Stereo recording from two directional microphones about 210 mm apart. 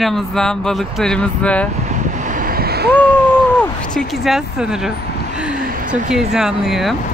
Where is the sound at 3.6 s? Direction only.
Centre (ahead or behind).